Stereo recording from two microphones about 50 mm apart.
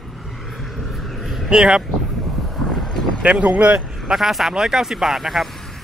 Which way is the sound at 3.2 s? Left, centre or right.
Right.